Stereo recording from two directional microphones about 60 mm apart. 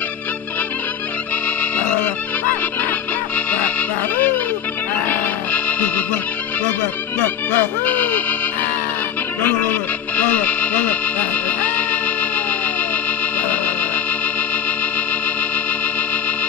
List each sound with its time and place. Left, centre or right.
1.6 s music: left
3.3 s music: left
5.0 s music: left
7.2 s speech: left
9.4 s speech: left
13.4 s music: left